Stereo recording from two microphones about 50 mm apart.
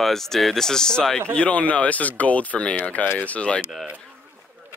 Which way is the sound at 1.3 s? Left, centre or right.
Left.